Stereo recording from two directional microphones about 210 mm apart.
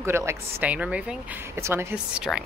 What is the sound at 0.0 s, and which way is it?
Speech, 10° right (ahead or behind).